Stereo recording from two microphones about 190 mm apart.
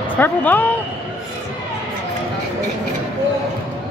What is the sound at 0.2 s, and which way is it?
Speech, 10° left (ahead or behind).